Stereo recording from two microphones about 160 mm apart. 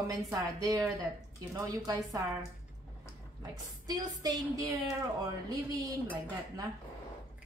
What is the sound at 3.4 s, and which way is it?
A woman's voice, 25° right (ahead or behind).